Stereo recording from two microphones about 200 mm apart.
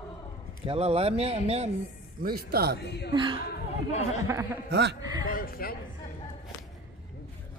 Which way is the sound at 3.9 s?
35° left (ahead or behind).